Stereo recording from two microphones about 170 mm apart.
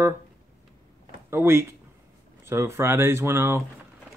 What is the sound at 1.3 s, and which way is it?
Speech, 15° right (ahead or behind).